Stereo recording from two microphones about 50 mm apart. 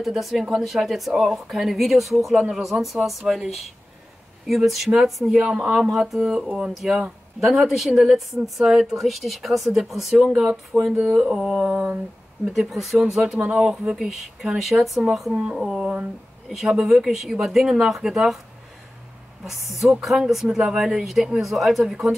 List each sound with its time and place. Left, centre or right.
0.0 s speech: centre
11.0 s speech: centre
12.5 s speech: centre
13.4 s speech: right
13.7 s speech: centre
19.4 s speech: centre